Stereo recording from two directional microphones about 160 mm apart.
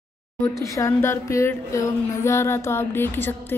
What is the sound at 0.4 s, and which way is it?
A woman's voice, 20° left (ahead or behind).